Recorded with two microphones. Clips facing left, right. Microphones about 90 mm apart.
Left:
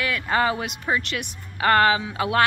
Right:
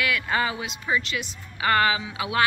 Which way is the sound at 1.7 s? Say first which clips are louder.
Left 4 dB; 45° left (ahead or behind).